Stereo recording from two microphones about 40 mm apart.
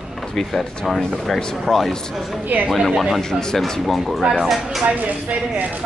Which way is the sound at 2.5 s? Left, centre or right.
Right.